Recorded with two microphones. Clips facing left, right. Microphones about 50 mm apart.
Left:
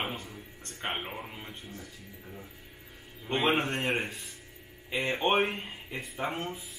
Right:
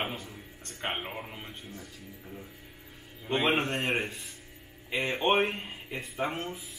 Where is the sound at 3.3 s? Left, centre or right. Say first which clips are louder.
Even; centre.